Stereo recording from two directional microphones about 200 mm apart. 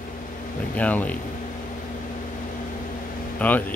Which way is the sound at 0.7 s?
5° left (ahead or behind).